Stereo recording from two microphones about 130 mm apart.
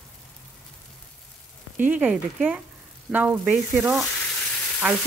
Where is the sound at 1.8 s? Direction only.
10° right (ahead or behind).